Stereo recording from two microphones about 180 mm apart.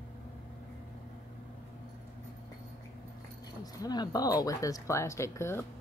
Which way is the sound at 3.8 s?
20° left (ahead or behind).